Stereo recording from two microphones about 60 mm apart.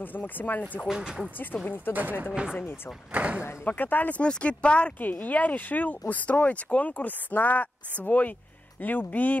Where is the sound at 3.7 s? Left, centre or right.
Left.